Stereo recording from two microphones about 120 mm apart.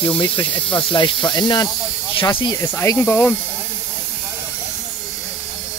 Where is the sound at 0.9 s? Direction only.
35° left (ahead or behind).